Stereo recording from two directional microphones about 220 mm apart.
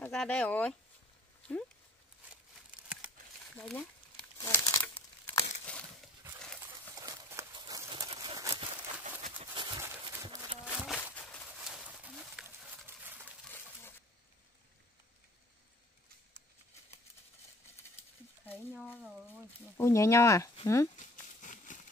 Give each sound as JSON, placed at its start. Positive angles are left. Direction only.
{"t": 0.0, "sound": "speech", "side_deg": 5}
{"t": 3.5, "sound": "speech", "side_deg": 5}
{"t": 4.2, "sound": "crumpling", "side_deg": 15}
{"t": 4.9, "sound": "crumpling", "side_deg": 25}
{"t": 7.0, "sound": "a sound", "side_deg": -15}
{"t": 10.6, "sound": "walk", "side_deg": -5}
{"t": 11.1, "sound": "a sound", "side_deg": 0}
{"t": 19.8, "sound": "speech", "side_deg": 15}
{"t": 20.9, "sound": "a sound", "side_deg": 35}